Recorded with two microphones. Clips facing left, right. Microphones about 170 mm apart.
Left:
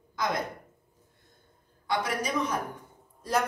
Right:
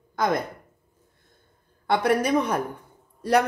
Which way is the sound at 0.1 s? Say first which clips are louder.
Right 7 dB; 55° right (ahead or behind).